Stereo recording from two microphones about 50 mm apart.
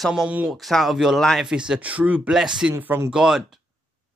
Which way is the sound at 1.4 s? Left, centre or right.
Centre.